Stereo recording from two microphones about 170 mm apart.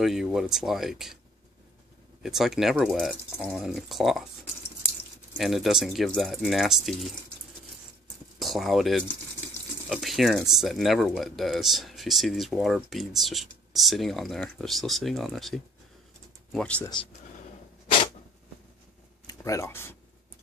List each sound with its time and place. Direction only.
0.0 s speech: centre (ahead or behind)
2.2 s speech: centre (ahead or behind)
5.4 s speech: centre (ahead or behind)
8.4 s speech: centre (ahead or behind)
19.2 s speech: 20° left (ahead or behind)